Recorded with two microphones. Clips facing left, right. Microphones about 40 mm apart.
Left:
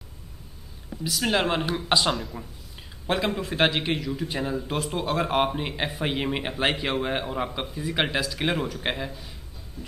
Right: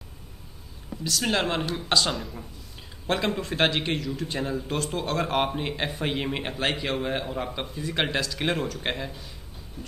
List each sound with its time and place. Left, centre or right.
1.0 s a man's voice: centre
3.1 s a man's voice: centre
9.8 s a sound: right